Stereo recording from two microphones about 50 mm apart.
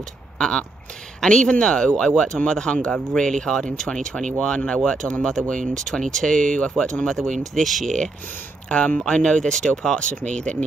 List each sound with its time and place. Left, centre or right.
0.4 s speech: centre
7.3 s speech: centre
8.6 s speech: left
9.9 s speech: left